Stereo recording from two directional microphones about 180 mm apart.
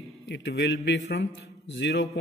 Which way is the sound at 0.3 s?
85° left.